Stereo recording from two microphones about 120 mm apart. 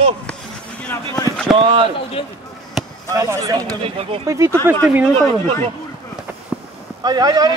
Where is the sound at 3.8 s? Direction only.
50° right (ahead or behind).